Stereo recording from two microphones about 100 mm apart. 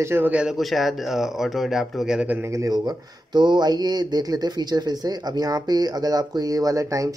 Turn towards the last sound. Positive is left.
turn(degrees=-35)  # may be behind; listen again after turning